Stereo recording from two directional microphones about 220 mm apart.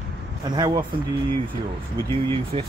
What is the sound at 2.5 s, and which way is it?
Speech, 25° right (ahead or behind).